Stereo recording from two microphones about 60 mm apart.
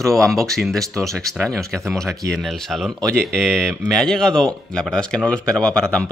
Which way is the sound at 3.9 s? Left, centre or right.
Centre.